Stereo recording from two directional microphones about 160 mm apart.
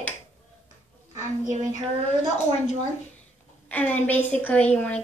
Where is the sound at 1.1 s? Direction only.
25° right (ahead or behind).